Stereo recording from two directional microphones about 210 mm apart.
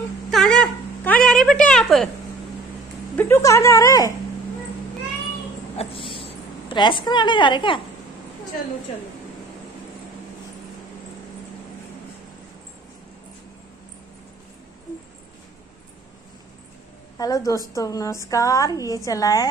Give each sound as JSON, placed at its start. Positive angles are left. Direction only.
{"t": 0.3, "sound": "a sound", "side_deg": 5}
{"t": 3.2, "sound": "a woman's voice", "side_deg": 10}
{"t": 5.8, "sound": "a woman's voice", "side_deg": 25}
{"t": 17.2, "sound": "a woman's voice", "side_deg": 15}